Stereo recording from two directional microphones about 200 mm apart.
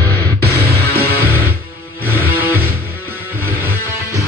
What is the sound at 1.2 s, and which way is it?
Music, 10° right (ahead or behind).